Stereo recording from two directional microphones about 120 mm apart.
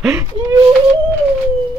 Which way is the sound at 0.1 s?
20° right (ahead or behind).